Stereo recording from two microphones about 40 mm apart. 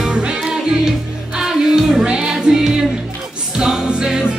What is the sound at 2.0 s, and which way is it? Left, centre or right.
Music, right.